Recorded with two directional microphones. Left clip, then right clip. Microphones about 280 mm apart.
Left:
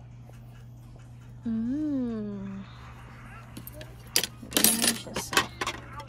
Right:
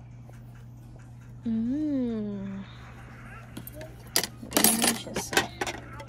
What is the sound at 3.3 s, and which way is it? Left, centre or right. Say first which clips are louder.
Cash register: right 2 dB; centre.